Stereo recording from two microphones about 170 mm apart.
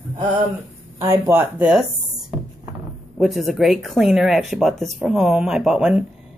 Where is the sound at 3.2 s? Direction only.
Centre (ahead or behind).